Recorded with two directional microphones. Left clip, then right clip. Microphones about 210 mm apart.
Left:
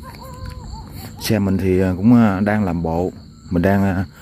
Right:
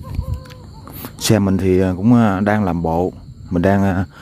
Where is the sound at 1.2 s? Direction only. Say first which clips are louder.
Right 4 dB; 25° right (ahead or behind).